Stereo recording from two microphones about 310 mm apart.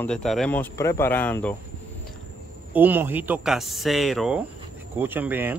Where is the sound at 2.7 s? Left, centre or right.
Centre.